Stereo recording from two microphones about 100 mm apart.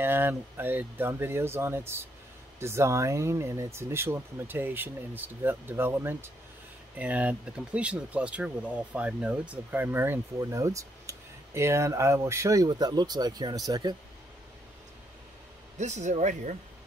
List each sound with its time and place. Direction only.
0.0 s speech: 20° right (ahead or behind)
12.6 s speech: 45° right (ahead or behind)